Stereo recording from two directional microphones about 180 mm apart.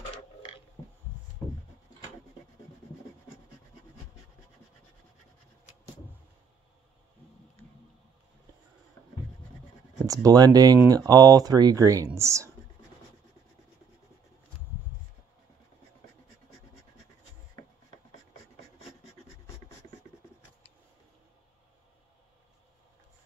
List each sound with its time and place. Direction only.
10.0 s speech: 20° right (ahead or behind)